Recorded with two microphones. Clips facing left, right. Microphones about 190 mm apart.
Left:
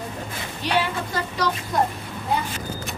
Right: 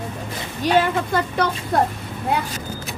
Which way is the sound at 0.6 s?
45° right (ahead or behind).